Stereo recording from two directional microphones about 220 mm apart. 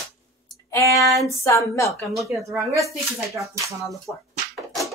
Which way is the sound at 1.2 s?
10° left (ahead or behind).